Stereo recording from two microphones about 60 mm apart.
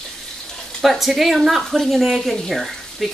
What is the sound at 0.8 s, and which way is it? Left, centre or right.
Speech, centre.